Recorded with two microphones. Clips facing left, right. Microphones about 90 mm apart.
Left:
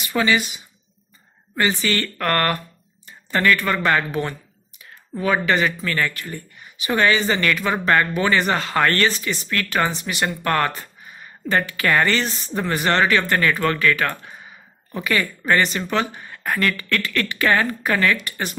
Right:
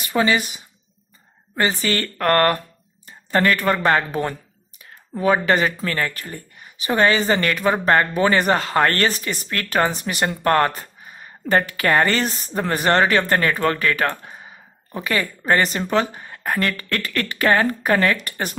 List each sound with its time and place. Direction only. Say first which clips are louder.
0.1 s speech: right 1 dB; 30° right (ahead or behind)
1.6 s speech: even; 35° right (ahead or behind)